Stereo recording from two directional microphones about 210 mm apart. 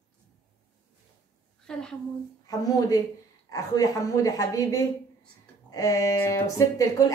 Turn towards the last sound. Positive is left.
turn(degrees=15)  # may be behind; listen again after turning